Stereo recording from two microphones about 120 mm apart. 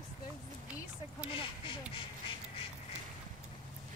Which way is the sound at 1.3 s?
45° left (ahead or behind).